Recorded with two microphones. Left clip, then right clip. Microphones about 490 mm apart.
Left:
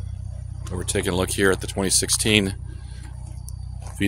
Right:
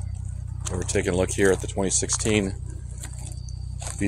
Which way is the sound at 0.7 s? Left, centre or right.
Left.